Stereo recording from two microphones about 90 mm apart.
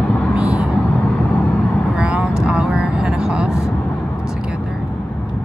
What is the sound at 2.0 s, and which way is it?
Vehicle, 10° right (ahead or behind).